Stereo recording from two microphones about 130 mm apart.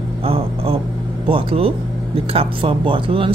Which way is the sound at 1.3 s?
45° right (ahead or behind).